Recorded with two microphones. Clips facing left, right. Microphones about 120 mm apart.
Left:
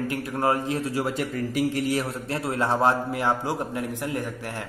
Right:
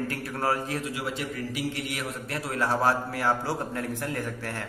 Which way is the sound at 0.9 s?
45° left (ahead or behind).